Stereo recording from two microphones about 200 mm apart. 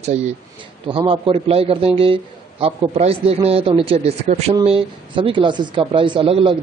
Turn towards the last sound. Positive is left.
turn(degrees=-25)  # may be behind; listen again after turning